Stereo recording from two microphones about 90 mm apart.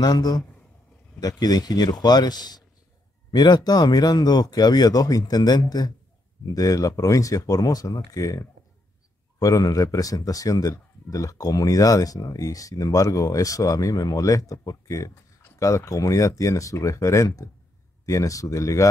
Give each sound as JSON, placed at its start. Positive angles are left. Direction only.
{"t": 0.0, "sound": "speech", "side_deg": 50}
{"t": 1.4, "sound": "speech", "side_deg": 45}